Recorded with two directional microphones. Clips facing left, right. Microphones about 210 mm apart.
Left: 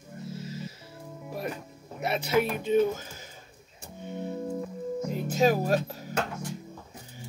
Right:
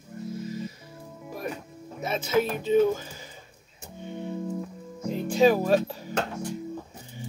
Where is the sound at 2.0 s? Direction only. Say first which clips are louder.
Right 1 dB; 65° left (ahead or behind).